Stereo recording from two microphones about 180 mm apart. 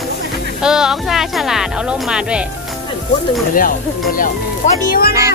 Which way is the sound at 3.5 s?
50° left (ahead or behind).